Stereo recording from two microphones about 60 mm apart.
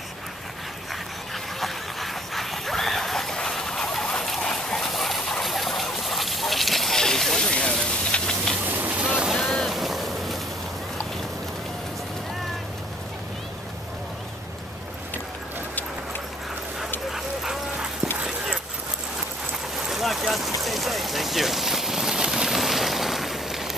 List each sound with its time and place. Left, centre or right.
1.3 s a sound: centre
8.6 s boat: right
9.0 s boat: centre
9.3 s boat: centre
17.1 s vehicle: centre
19.9 s a sound: centre
20.6 s rain on surface: centre